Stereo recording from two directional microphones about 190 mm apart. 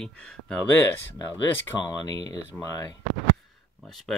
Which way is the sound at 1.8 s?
20° left (ahead or behind).